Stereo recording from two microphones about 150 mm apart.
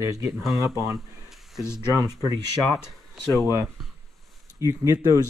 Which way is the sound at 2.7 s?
Centre (ahead or behind).